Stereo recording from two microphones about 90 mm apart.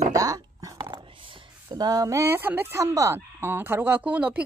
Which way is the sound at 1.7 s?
45° right (ahead or behind).